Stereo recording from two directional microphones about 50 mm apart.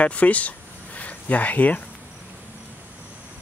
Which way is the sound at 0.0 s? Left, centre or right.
Left.